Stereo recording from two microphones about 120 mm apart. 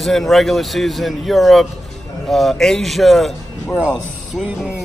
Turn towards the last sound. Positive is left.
turn(degrees=-10)  # may be behind; listen again after turning